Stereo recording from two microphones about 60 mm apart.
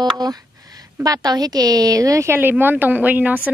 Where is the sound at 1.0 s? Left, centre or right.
Right.